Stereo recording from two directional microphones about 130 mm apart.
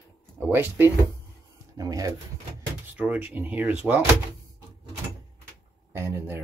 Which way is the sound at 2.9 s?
10° right (ahead or behind).